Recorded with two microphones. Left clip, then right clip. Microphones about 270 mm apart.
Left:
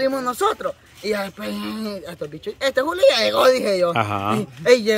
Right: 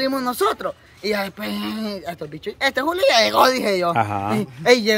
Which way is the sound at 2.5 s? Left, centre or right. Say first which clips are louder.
Left 1 dB; centre.